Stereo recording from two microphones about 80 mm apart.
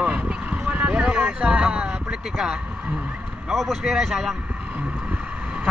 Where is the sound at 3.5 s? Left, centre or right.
Centre.